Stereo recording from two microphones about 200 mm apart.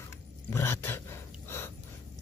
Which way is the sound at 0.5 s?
10° left (ahead or behind).